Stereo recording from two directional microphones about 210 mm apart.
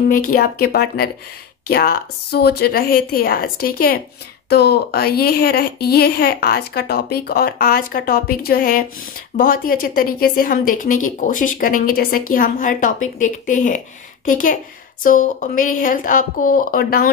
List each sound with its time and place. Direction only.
0.1 s a woman's voice: 40° left (ahead or behind)